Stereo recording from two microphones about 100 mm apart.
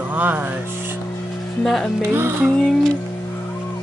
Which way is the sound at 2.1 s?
25° right (ahead or behind).